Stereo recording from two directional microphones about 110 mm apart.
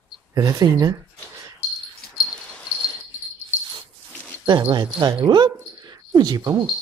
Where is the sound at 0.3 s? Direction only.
35° right (ahead or behind).